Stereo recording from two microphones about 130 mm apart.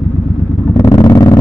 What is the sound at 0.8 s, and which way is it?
Vehicle, 30° left (ahead or behind).